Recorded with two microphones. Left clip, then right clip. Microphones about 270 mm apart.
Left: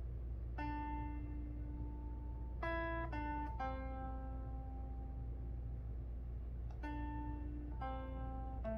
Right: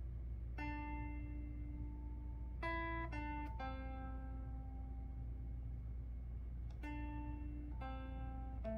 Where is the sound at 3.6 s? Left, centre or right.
Right.